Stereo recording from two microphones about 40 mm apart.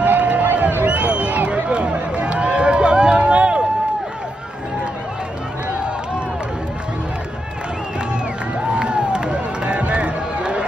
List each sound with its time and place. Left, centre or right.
0.0 s crowd: right
0.6 s a sound: right
8.7 s crowd: right